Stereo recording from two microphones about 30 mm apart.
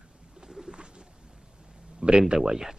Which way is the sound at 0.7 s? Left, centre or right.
Right.